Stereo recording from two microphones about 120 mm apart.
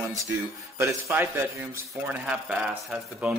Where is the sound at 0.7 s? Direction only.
20° right (ahead or behind).